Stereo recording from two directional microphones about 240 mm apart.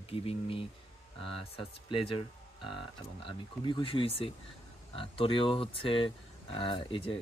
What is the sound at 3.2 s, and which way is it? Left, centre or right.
Speech, centre.